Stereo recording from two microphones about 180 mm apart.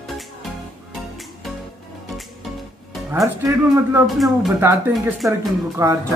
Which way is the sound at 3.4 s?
15° right (ahead or behind).